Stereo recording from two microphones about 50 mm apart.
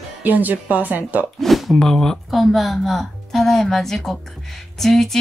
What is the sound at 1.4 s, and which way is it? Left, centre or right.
A woman's voice, centre.